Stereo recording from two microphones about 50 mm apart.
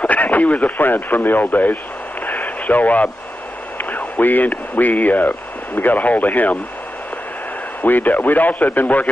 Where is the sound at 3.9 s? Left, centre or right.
Left.